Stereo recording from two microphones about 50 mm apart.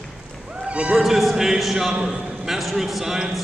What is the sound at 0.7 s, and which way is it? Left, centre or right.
Speech, centre.